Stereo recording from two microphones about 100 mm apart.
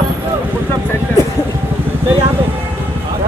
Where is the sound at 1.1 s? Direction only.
15° left (ahead or behind).